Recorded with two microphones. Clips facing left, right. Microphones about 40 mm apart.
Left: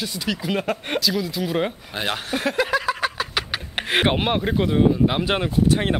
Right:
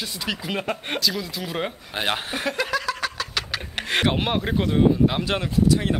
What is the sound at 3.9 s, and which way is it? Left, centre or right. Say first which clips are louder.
Speech: left 2 dB; centre.